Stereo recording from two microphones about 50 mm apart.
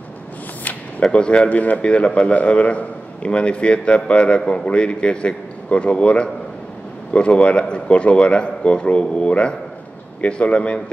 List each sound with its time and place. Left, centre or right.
1.1 s a man's voice: left